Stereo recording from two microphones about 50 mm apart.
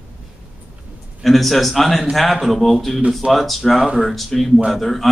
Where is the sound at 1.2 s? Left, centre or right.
Centre.